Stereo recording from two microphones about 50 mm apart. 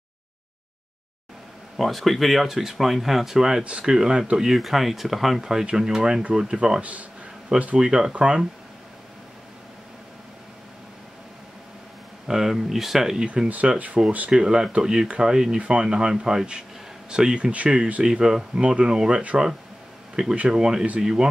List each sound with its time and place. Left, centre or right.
1.8 s speech: centre
6.8 s speech: right
7.8 s speech: centre
12.3 s speech: centre
13.5 s speech: right
14.3 s speech: centre
18.0 s speech: centre
20.4 s speech: centre